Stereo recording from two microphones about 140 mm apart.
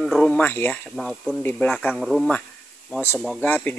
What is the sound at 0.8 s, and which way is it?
Speech, centre (ahead or behind).